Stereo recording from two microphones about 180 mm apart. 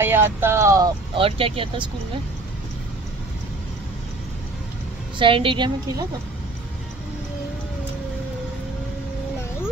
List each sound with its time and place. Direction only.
0.0 s speech: 10° right (ahead or behind); by 1.9 s 30° right (ahead or behind)
5.2 s speech: 30° right (ahead or behind)